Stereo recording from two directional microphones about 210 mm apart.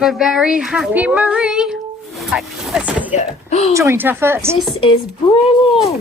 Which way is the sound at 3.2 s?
30° left (ahead or behind).